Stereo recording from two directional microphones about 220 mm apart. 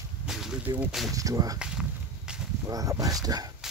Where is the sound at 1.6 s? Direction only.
5° right (ahead or behind).